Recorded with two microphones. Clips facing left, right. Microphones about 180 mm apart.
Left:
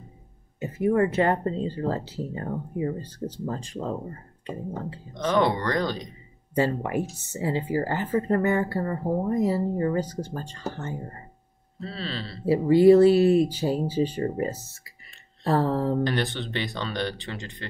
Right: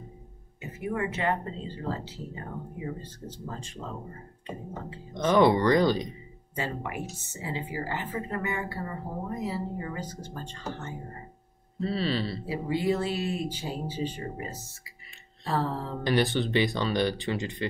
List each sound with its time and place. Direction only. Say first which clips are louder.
0.6 s speech: left 9 dB; 45° left (ahead or behind)
5.1 s speech: right 2 dB; 5° right (ahead or behind)
6.5 s speech: left 9 dB; 40° left (ahead or behind)
11.8 s speech: right 5 dB; 5° right (ahead or behind)
12.4 s speech: left 14 dB; 40° left (ahead or behind)
16.0 s speech: right 1 dB; 10° right (ahead or behind)